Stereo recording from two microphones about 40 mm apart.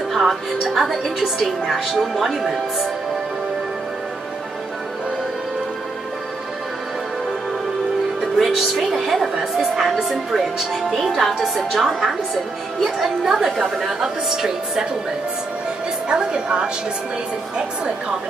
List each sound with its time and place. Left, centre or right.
0.1 s a woman's voice: centre
8.2 s a woman's voice: centre
16.1 s a woman's voice: right